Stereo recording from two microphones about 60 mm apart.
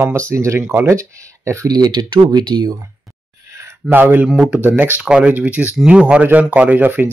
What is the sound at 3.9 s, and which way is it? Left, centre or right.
A man's voice, right.